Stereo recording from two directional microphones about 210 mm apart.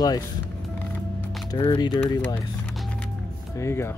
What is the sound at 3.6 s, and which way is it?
Speech, 10° left (ahead or behind).